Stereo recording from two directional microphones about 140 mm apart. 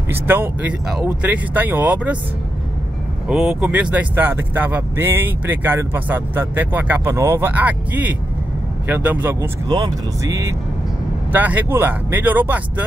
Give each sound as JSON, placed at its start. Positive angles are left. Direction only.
{"t": 0.1, "sound": "speech", "side_deg": -15}
{"t": 3.3, "sound": "speech", "side_deg": -5}
{"t": 9.7, "sound": "speech", "side_deg": -30}
{"t": 11.3, "sound": "speech", "side_deg": -10}